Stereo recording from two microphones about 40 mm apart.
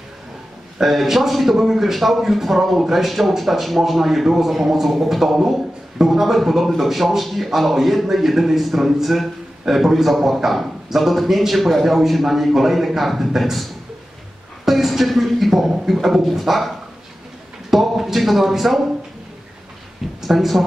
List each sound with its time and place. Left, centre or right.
0.7 s a man's voice: centre
14.6 s a sound: centre
15.9 s a man's voice: centre
20.2 s speech: centre